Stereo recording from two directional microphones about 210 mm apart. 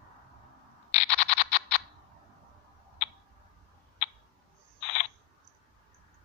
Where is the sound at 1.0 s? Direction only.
30° left (ahead or behind).